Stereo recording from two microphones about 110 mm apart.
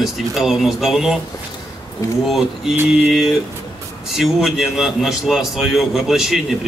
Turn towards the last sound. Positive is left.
turn(degrees=0)  # may be behind; listen again after turning